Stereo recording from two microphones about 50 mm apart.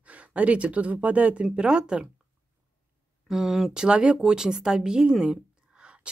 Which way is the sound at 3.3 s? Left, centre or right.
Centre.